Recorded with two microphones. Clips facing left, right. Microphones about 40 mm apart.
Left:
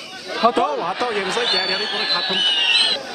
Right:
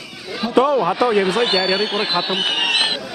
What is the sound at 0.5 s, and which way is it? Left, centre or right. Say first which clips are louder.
Speech: right 5 dB; centre.